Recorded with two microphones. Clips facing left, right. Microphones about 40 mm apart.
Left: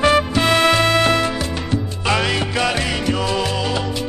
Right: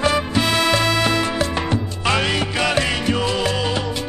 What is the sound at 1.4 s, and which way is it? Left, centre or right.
Music, right.